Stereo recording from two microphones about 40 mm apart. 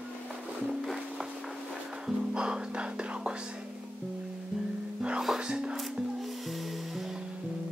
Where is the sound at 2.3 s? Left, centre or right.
Right.